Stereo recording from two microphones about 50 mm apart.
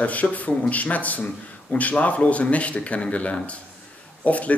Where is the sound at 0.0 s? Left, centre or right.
Left.